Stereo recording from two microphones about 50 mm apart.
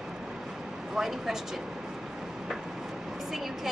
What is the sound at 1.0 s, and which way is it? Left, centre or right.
Speech, centre.